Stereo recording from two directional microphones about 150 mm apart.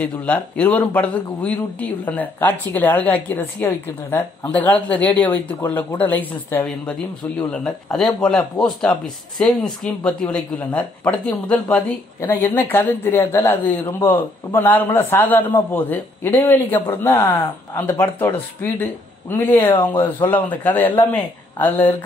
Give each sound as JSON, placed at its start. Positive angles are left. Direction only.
{"t": 0.0, "sound": "speech", "side_deg": 10}
{"t": 12.2, "sound": "speech", "side_deg": 15}
{"t": 19.6, "sound": "speech", "side_deg": 40}
{"t": 19.9, "sound": "speech", "side_deg": 15}